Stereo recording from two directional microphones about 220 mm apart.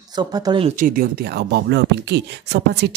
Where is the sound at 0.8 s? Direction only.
40° right (ahead or behind).